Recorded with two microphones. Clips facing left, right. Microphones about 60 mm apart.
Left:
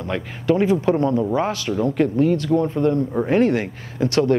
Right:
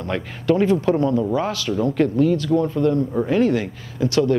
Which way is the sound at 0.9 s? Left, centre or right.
Left.